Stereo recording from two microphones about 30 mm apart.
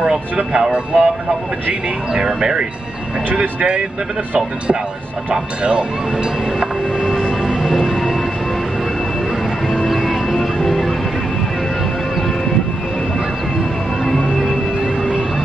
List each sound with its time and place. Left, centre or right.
0.5 s speech: right
2.1 s speech: right
3.3 s speech: right
5.3 s speech: right
7.7 s music: centre
9.8 s music: centre